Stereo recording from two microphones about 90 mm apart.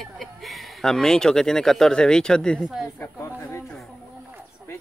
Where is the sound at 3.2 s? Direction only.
30° left (ahead or behind).